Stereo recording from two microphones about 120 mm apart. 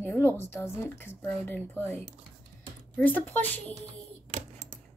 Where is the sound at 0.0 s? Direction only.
15° left (ahead or behind).